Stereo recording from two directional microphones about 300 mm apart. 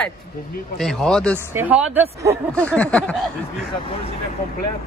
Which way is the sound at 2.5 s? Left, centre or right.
Centre.